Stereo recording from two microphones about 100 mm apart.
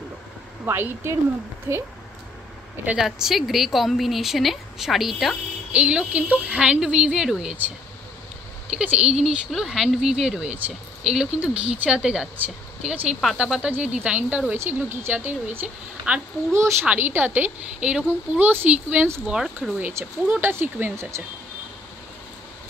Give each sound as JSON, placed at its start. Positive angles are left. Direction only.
{"t": 0.7, "sound": "a woman's voice", "side_deg": -25}
{"t": 3.0, "sound": "a woman's voice", "side_deg": 0}
{"t": 5.7, "sound": "speech", "side_deg": -10}
{"t": 8.7, "sound": "a woman's voice", "side_deg": -10}
{"t": 19.2, "sound": "a woman's voice", "side_deg": -5}
{"t": 19.8, "sound": "a woman's voice", "side_deg": -25}